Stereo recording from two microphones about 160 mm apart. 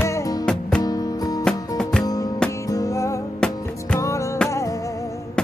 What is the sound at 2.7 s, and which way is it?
Music, 20° left (ahead or behind).